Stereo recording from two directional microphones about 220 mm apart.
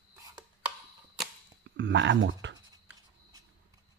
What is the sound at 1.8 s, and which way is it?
Speech, 55° right (ahead or behind).